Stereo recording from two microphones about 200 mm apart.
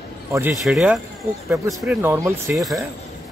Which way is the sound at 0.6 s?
Centre (ahead or behind).